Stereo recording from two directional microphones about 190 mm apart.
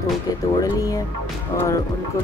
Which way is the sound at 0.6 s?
20° left (ahead or behind).